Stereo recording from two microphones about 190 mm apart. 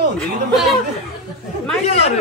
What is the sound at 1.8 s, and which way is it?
Speech, 35° left (ahead or behind).